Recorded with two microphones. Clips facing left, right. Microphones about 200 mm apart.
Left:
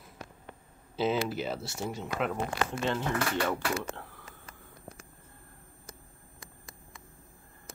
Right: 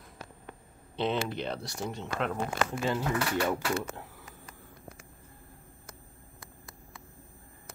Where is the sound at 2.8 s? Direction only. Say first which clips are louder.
Even; 10° right (ahead or behind).